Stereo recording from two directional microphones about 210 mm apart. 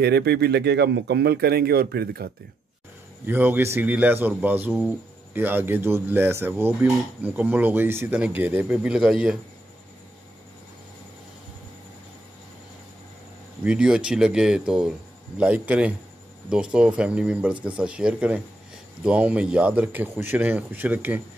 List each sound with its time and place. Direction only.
0.0 s speech: 50° right (ahead or behind)
3.3 s a man's voice: 10° right (ahead or behind)
13.7 s a man's voice: 5° right (ahead or behind)